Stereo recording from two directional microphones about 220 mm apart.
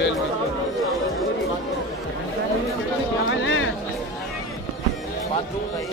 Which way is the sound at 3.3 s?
60° left (ahead or behind).